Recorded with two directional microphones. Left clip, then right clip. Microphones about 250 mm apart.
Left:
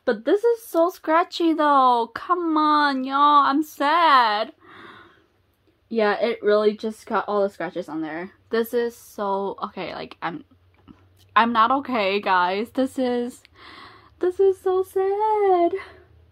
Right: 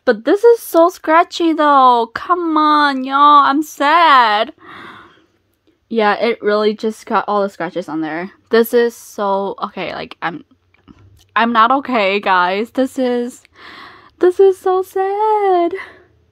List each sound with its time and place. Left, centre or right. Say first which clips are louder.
0.0 s speech: right 9 dB; right
4.6 s a sound: right 9 dB; right
5.9 s speech: right 7 dB; right